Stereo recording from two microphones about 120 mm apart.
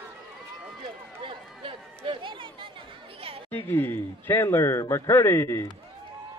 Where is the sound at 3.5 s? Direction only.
15° left (ahead or behind).